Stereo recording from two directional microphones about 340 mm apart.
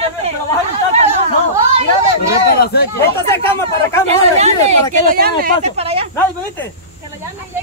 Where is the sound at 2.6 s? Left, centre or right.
Left.